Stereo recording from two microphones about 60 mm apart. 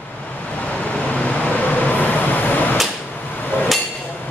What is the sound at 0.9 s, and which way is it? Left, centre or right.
Vehicle, centre.